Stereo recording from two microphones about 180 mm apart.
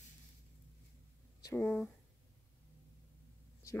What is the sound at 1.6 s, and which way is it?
Speech, 5° left (ahead or behind).